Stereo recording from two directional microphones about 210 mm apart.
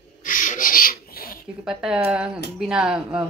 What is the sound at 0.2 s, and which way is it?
Rub, 40° left (ahead or behind).